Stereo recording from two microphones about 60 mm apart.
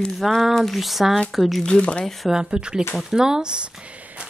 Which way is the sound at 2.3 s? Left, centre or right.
Centre.